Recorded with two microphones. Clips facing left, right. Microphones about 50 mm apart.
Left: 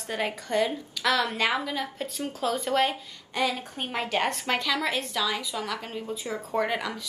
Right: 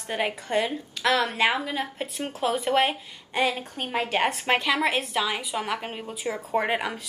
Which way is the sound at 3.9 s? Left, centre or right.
Centre.